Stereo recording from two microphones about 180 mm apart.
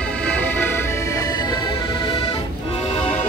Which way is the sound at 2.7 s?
30° left (ahead or behind).